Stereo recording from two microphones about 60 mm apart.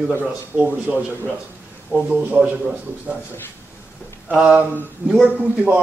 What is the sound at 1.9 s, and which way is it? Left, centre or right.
Speech, left.